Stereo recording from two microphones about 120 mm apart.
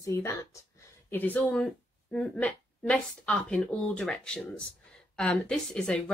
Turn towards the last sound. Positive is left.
turn(degrees=10)  # may be behind; listen again after turning